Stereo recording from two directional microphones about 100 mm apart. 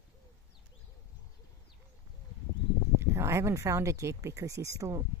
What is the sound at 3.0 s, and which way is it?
Speech, 25° right (ahead or behind).